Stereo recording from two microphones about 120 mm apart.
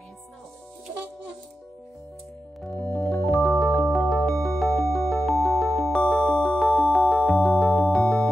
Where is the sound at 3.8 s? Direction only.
Centre (ahead or behind).